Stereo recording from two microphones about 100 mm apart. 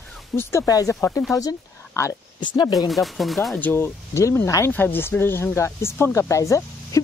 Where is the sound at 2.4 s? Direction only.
50° left (ahead or behind).